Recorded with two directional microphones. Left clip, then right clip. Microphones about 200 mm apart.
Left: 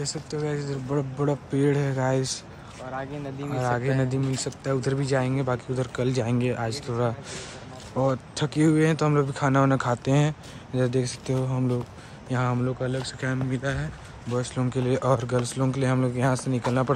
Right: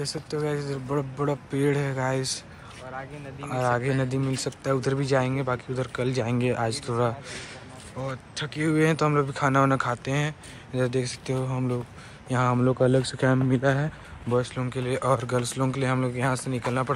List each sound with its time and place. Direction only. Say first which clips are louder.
0.0 s speech: right 1 dB; centre (ahead or behind)
3.4 s speech: right 2 dB; 5° left (ahead or behind)
8.0 s speech: left 7 dB; 25° left (ahead or behind)
8.6 s speech: even; 5° left (ahead or behind)
12.8 s speech: right 7 dB; 15° right (ahead or behind)
14.3 s speech: right 2 dB; 10° left (ahead or behind)